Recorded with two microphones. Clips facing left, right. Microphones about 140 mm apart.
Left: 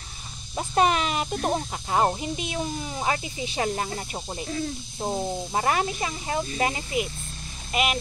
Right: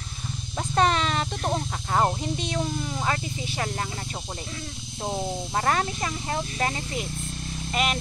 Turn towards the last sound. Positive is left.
turn(degrees=5)  # may be behind; listen again after turning